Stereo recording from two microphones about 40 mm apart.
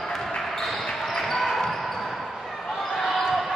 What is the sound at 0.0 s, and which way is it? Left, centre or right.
Basketball bounce, centre.